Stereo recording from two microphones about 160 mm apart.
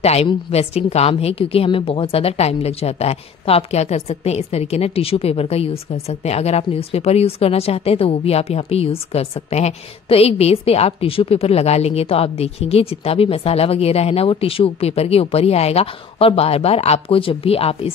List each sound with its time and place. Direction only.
0.0 s a woman's voice: 40° left (ahead or behind)